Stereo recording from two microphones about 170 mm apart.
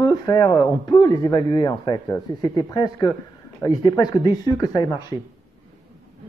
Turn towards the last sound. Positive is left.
turn(degrees=25)  # may be behind; listen again after turning